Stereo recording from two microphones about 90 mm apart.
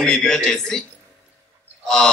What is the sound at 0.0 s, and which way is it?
Speech, 5° left (ahead or behind).